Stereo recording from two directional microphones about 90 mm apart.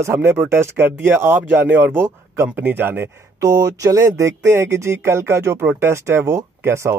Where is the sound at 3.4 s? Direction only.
45° right (ahead or behind).